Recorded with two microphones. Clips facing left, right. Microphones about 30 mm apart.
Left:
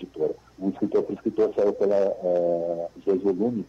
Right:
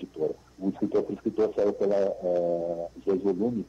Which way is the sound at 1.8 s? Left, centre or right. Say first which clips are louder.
Left 3 dB; centre.